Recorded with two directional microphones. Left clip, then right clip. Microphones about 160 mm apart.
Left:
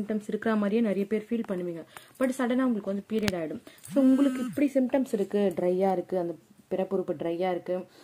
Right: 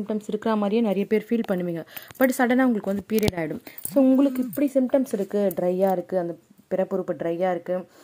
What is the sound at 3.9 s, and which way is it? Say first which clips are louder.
A woman's voice: right 4 dB; 15° right (ahead or behind).